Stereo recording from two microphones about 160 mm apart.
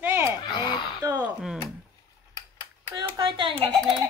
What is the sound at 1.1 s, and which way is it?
Speech, 5° right (ahead or behind).